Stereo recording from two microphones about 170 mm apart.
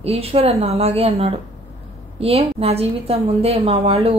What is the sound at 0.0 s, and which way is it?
Speech, 35° right (ahead or behind).